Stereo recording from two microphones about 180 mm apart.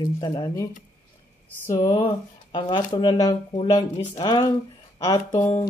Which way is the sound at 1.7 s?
20° left (ahead or behind).